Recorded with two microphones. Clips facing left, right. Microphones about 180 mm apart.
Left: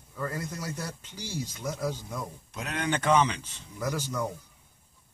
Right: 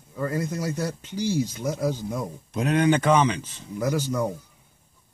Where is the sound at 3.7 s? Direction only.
20° right (ahead or behind).